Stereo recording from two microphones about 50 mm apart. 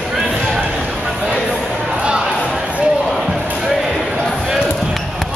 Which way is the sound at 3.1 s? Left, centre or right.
Centre.